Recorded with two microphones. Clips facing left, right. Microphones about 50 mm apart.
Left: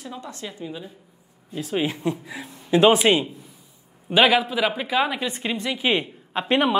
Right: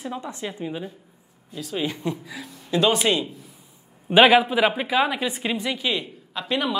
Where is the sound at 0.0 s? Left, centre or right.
Right.